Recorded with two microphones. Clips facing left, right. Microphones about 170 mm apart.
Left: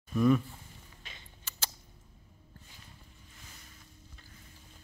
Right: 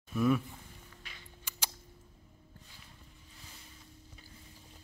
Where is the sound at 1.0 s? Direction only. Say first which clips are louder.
Left 2 dB; 25° left (ahead or behind).